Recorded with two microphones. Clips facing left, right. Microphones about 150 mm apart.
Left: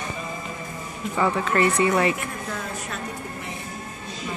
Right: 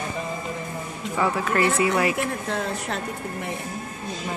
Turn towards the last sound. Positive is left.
turn(degrees=-65)  # may be behind; listen again after turning